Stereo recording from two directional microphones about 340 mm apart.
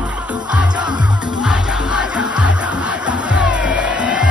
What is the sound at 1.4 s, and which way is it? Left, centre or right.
Music, centre.